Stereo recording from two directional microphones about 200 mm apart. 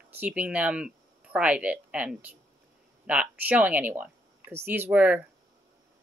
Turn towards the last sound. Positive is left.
turn(degrees=-10)  # may be behind; listen again after turning